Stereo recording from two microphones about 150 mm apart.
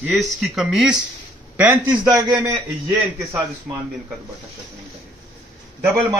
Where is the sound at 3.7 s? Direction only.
10° right (ahead or behind).